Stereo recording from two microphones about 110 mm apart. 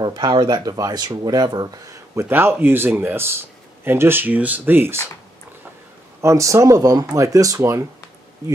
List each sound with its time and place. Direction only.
0.0 s speech: 40° right (ahead or behind)
2.2 s speech: 20° right (ahead or behind)
6.2 s speech: 30° right (ahead or behind)